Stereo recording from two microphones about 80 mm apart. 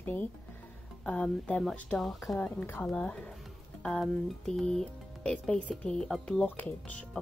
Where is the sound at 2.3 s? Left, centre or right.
Centre.